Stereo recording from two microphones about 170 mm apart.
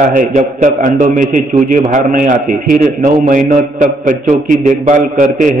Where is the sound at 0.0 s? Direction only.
55° right (ahead or behind).